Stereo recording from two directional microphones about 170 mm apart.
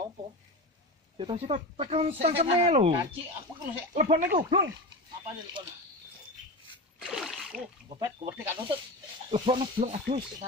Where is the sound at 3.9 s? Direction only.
45° right (ahead or behind).